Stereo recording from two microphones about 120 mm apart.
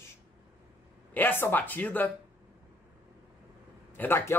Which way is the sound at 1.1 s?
15° left (ahead or behind).